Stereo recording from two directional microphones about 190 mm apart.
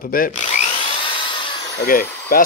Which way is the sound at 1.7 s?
50° left (ahead or behind).